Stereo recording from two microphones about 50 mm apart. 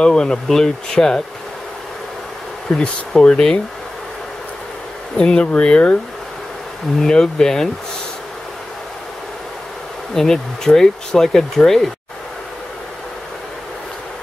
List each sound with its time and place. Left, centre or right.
0.0 s speech: centre
2.7 s speech: left
3.1 s speech: centre
5.1 s speech: centre
7.0 s speech: centre
10.1 s speech: centre